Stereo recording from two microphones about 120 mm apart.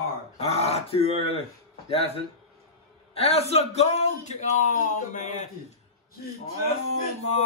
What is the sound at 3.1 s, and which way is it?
A man's voice, 55° left (ahead or behind).